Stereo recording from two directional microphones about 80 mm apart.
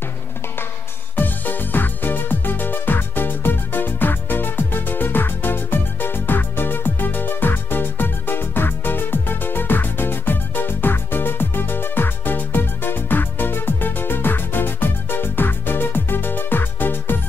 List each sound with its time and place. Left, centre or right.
1.1 s music: left